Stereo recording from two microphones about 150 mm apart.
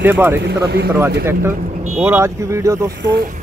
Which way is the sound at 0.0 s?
15° right (ahead or behind).